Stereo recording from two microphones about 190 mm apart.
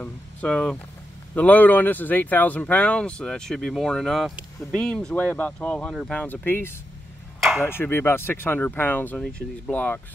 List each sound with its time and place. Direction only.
0.0 s speech: 5° left (ahead or behind)